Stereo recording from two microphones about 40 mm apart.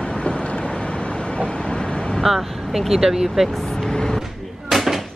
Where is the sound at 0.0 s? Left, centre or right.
Left.